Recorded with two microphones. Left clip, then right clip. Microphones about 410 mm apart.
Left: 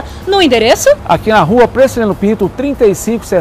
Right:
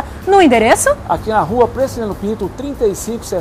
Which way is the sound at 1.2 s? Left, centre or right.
Left.